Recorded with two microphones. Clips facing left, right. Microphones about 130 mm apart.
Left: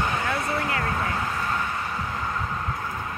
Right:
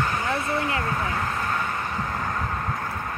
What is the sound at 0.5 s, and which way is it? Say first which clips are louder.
Speech: right 1 dB; 25° right (ahead or behind).